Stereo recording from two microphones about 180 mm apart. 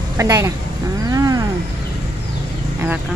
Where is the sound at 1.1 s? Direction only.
20° right (ahead or behind).